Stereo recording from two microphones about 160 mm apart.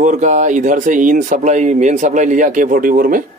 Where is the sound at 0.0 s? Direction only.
50° right (ahead or behind).